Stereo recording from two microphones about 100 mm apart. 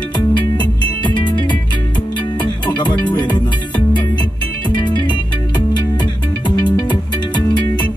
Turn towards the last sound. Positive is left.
turn(degrees=50)  # may be behind; listen again after turning